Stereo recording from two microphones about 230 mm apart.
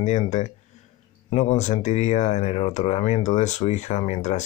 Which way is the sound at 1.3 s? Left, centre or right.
Left.